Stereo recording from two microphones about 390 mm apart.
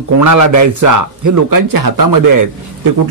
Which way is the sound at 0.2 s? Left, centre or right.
Right.